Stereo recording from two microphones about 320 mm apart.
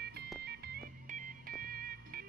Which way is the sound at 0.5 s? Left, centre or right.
Right.